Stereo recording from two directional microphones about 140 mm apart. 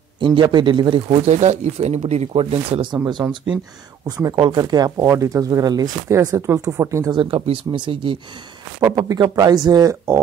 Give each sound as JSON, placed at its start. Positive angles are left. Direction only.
{"t": 0.2, "sound": "speech", "side_deg": -35}
{"t": 7.1, "sound": "speech", "side_deg": -40}
{"t": 8.9, "sound": "speech", "side_deg": -25}